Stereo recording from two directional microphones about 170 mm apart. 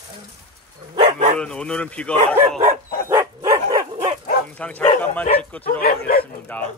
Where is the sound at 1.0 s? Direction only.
45° right (ahead or behind).